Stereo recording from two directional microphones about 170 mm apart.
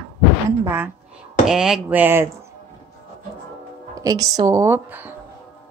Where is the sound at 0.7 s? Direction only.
10° right (ahead or behind).